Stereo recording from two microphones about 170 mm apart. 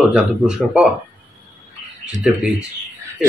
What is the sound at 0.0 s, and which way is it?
Speech, 5° right (ahead or behind).